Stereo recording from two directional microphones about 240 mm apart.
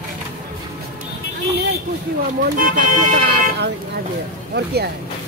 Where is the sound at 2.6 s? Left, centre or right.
Right.